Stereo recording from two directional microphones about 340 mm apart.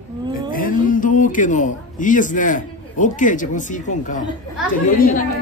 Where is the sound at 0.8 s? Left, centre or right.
Left.